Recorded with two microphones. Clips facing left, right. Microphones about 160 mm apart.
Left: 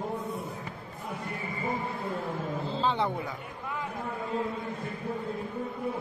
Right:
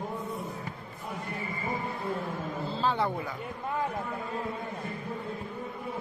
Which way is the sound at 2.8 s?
20° left (ahead or behind).